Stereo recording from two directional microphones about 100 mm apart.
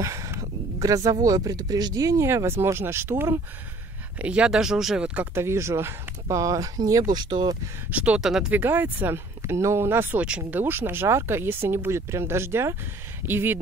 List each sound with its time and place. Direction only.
0.0 s a sound: 30° right (ahead or behind)
1.2 s speech: 40° right (ahead or behind)
4.2 s speech: 10° right (ahead or behind); by 7.5 s 50° right (ahead or behind)
7.9 s speech: 10° right (ahead or behind)
8.5 s speech: 20° right (ahead or behind)
10.2 s speech: 10° right (ahead or behind)
10.6 s speech: 20° right (ahead or behind)